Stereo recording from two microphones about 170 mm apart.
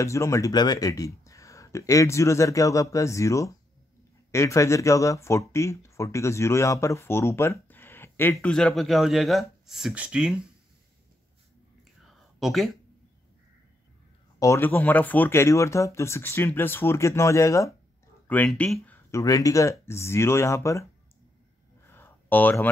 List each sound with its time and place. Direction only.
0.0 s speech: 15° left (ahead or behind); by 10.4 s 5° right (ahead or behind)
12.4 s speech: centre (ahead or behind)
14.4 s speech: 15° left (ahead or behind)
21.8 s a sound: 15° left (ahead or behind)